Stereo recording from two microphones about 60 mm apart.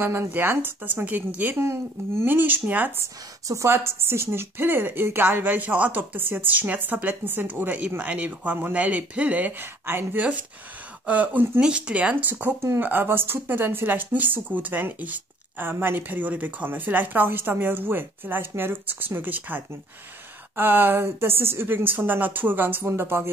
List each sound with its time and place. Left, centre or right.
0.3 s speech: right
1.6 s speech: right
3.0 s speech: right
3.7 s speech: right
11.1 s speech: right